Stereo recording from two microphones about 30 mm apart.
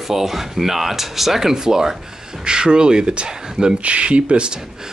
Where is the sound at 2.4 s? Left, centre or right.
Right.